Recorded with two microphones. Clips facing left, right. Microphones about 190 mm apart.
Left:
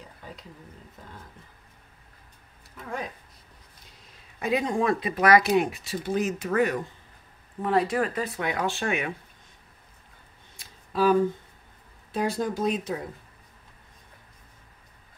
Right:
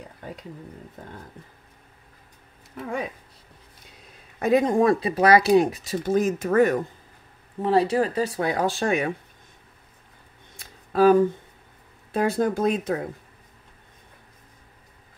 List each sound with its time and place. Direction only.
4.4 s speech: 45° right (ahead or behind)
7.6 s speech: 30° right (ahead or behind)
10.9 s speech: 50° right (ahead or behind)